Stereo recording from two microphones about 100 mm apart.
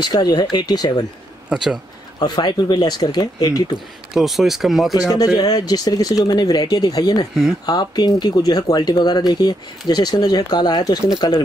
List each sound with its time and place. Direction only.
0.1 s speech: 45° left (ahead or behind)
1.5 s speech: 5° right (ahead or behind)
2.1 s speech: 45° left (ahead or behind)
4.1 s speech: 5° right (ahead or behind)
4.9 s speech: 40° left (ahead or behind)